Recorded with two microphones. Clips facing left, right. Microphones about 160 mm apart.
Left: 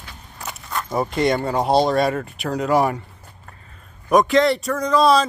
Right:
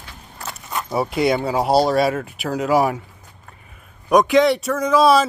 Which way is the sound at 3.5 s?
10° right (ahead or behind).